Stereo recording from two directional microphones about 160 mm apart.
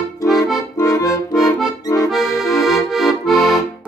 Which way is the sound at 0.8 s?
20° left (ahead or behind).